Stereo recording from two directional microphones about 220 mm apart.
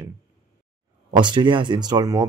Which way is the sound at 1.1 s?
20° right (ahead or behind).